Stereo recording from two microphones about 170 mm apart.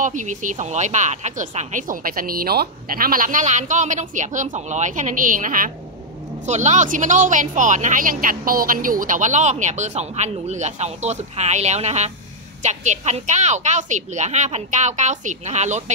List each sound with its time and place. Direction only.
0.0 s a woman's voice: 45° right (ahead or behind)